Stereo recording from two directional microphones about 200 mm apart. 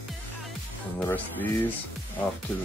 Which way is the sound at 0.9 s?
10° left (ahead or behind).